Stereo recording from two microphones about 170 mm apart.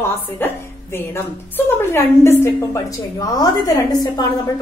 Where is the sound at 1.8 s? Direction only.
15° left (ahead or behind).